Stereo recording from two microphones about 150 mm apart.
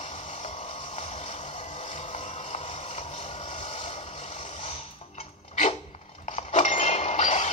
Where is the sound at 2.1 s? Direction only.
45° left (ahead or behind).